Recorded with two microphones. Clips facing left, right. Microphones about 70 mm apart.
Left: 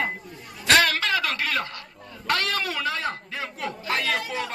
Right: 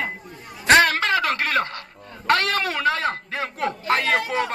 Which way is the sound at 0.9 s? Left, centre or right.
Right.